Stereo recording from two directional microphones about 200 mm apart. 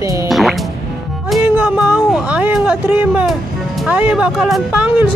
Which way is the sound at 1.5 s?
10° right (ahead or behind).